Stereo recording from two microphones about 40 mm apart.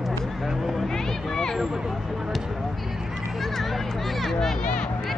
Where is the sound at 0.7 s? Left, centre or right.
Centre.